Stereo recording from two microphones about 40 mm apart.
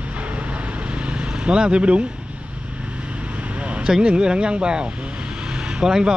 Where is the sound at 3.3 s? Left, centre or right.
Right.